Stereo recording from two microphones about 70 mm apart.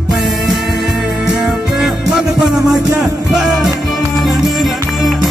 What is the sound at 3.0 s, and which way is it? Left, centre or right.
Music, centre.